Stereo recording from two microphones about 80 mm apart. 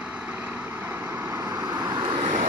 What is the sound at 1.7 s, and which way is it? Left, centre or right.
Vehicle, right.